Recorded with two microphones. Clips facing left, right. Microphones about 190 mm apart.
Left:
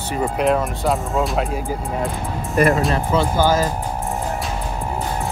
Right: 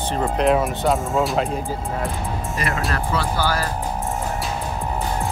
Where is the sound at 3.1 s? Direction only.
20° left (ahead or behind).